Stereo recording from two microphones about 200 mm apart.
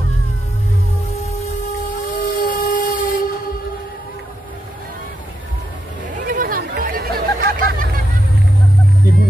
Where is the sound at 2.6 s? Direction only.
40° left (ahead or behind).